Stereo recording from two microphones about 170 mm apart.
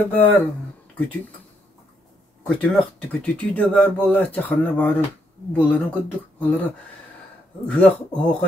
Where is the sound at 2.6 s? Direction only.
5° left (ahead or behind).